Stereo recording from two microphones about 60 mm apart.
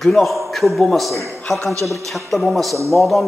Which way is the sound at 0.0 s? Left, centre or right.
Centre.